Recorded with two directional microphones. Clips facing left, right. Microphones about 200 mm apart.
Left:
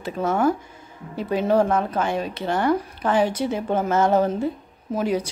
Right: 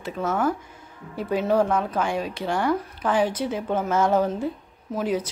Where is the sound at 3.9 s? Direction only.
5° left (ahead or behind).